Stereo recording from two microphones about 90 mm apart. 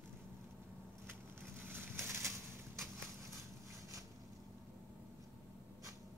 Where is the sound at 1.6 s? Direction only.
25° right (ahead or behind).